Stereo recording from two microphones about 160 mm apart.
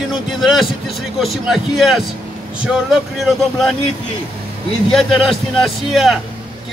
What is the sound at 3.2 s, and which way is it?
Speech, centre (ahead or behind).